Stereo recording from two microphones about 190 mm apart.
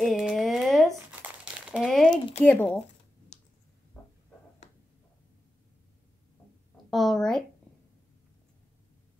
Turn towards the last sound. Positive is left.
turn(degrees=5)  # may be behind; listen again after turning